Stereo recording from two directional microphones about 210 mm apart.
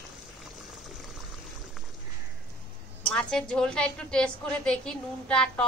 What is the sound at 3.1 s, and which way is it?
A woman's voice, 5° left (ahead or behind).